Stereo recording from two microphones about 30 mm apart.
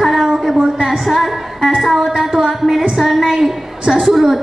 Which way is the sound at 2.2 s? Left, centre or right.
Centre.